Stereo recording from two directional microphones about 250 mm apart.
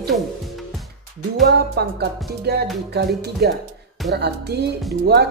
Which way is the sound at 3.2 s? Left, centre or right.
Right.